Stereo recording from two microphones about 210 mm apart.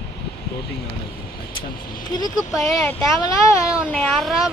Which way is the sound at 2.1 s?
20° left (ahead or behind).